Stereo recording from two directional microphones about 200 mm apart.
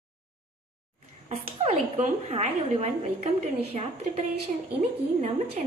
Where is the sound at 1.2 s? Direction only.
35° right (ahead or behind).